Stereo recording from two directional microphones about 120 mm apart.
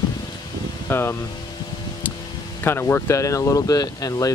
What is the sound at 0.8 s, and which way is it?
Speech, 20° left (ahead or behind).